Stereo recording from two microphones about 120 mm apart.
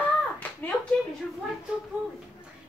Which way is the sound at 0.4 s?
15° left (ahead or behind).